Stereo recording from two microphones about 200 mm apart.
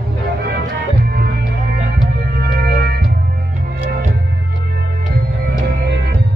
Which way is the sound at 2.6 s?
50° right (ahead or behind).